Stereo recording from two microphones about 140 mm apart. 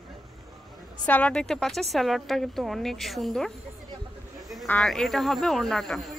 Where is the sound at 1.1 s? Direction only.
10° left (ahead or behind).